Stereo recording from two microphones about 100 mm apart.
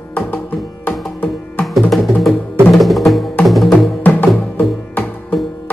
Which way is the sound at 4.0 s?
15° left (ahead or behind).